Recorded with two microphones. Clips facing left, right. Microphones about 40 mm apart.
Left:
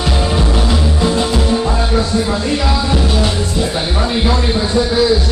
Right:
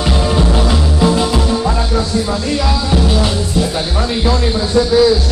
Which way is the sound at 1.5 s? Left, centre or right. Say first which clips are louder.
Left 1 dB; centre.